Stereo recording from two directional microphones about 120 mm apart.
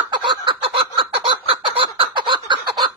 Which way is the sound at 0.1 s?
45° right (ahead or behind).